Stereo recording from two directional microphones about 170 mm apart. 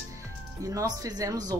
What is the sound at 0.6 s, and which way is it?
Speech, 20° right (ahead or behind).